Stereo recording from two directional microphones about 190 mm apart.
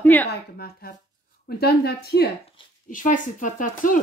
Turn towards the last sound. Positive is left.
turn(degrees=45)  # may be behind; listen again after turning